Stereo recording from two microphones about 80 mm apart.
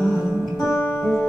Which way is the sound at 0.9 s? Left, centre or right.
Left.